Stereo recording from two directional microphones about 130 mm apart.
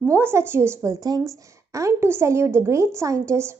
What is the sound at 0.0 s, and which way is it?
A woman's voice, 20° right (ahead or behind).